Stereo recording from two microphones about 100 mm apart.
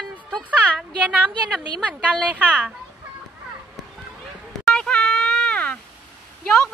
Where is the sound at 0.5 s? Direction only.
15° right (ahead or behind).